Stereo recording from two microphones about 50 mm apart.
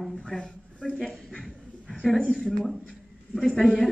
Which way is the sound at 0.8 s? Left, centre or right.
Centre.